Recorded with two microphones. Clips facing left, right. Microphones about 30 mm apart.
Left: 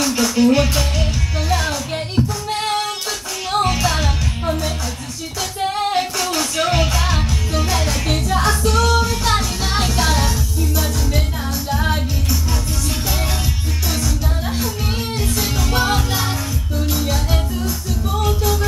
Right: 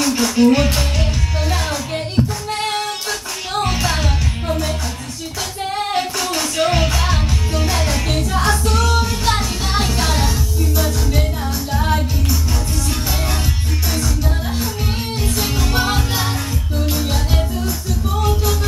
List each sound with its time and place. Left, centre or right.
0.0 s music: centre
2.1 s music: centre
5.8 s music: centre
11.7 s music: centre
15.4 s music: centre